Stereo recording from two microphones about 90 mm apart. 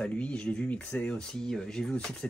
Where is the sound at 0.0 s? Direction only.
15° left (ahead or behind).